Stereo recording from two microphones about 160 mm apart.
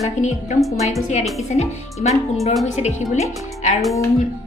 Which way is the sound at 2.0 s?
45° left (ahead or behind).